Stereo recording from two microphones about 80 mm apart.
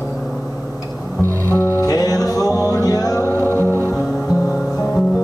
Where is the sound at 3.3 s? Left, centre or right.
Right.